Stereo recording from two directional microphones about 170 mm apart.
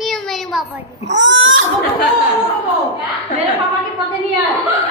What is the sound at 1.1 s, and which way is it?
Speech, 90° right.